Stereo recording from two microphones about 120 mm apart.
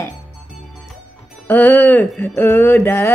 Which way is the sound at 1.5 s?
15° left (ahead or behind).